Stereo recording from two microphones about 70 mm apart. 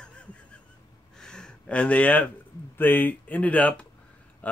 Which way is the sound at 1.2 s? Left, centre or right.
Centre.